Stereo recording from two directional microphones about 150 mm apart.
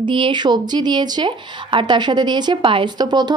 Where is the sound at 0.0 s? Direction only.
35° right (ahead or behind).